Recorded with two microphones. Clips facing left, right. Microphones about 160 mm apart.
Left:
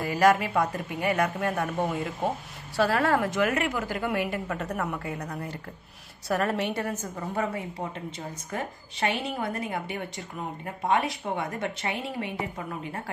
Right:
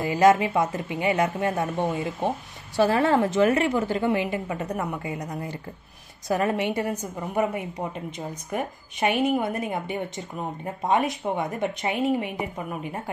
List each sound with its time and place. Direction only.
0.0 s a woman's voice: 20° right (ahead or behind)